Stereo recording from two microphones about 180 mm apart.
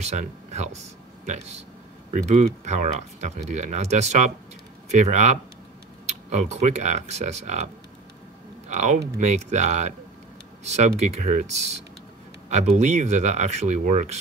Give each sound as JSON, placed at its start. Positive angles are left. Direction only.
{"t": 0.0, "sound": "speech", "side_deg": -40}